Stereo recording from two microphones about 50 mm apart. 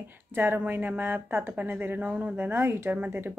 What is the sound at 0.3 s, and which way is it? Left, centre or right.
Speech, right.